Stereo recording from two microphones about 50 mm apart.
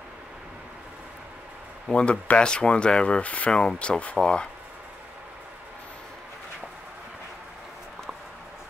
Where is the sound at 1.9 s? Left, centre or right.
Left.